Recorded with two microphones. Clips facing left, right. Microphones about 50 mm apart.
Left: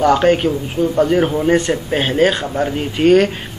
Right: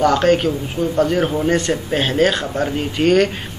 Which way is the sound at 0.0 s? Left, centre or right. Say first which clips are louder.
Left 2 dB; centre.